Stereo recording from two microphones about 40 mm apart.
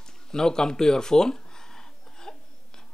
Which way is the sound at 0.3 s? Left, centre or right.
Centre.